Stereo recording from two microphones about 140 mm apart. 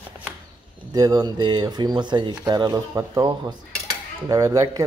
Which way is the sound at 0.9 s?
25° right (ahead or behind).